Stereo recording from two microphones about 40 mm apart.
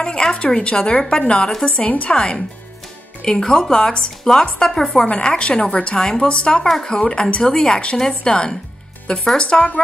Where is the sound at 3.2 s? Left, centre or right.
Centre.